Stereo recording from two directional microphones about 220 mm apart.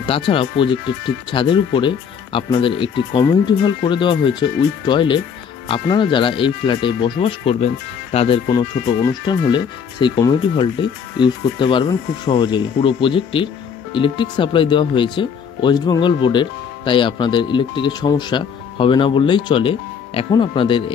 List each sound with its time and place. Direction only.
0.0 s speech: 25° left (ahead or behind)